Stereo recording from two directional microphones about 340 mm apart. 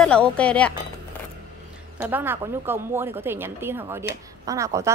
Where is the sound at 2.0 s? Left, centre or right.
Centre.